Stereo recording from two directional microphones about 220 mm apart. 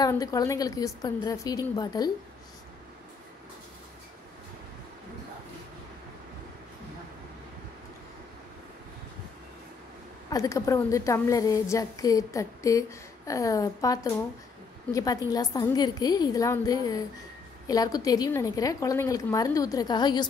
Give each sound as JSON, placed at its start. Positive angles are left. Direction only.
{"t": 0.0, "sound": "a woman's voice", "side_deg": 15}
{"t": 10.3, "sound": "a woman's voice", "side_deg": 15}